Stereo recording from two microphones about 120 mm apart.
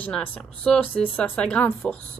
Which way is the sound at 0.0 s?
15° left (ahead or behind).